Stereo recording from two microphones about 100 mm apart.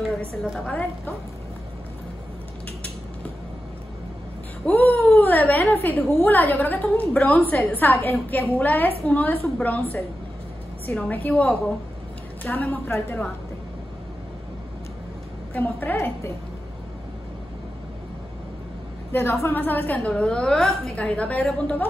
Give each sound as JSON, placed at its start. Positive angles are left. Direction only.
{"t": 0.7, "sound": "a woman's voice", "side_deg": 15}
{"t": 4.6, "sound": "a woman's voice", "side_deg": 20}
{"t": 15.5, "sound": "a woman's voice", "side_deg": 20}
{"t": 19.4, "sound": "a woman's voice", "side_deg": 20}